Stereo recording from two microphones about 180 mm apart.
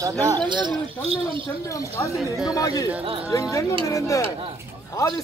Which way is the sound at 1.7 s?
15° left (ahead or behind).